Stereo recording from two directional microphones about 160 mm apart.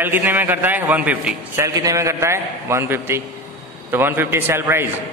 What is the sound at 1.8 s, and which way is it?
A man's voice, 20° right (ahead or behind).